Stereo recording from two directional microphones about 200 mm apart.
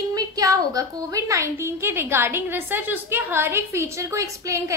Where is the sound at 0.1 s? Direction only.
15° right (ahead or behind).